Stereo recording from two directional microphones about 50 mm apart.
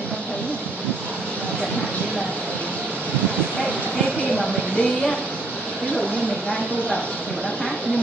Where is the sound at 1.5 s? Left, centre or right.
Centre.